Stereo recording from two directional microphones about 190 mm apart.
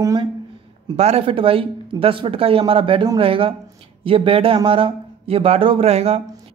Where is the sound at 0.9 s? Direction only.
35° right (ahead or behind).